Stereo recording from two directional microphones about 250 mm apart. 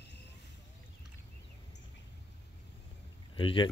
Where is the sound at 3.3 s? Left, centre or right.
Left.